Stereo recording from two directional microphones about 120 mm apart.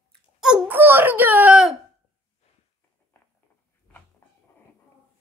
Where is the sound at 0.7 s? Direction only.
20° right (ahead or behind).